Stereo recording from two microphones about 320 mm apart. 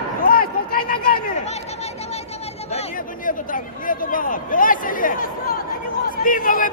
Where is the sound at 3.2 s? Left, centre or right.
Left.